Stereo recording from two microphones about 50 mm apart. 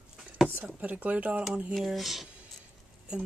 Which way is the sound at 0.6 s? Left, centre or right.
Right.